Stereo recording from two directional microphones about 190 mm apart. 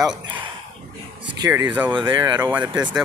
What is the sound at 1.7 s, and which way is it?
Speech, 10° right (ahead or behind).